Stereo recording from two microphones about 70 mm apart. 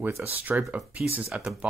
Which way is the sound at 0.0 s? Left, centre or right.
Right.